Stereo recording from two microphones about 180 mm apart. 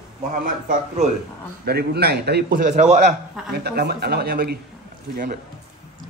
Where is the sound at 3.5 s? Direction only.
65° right (ahead or behind).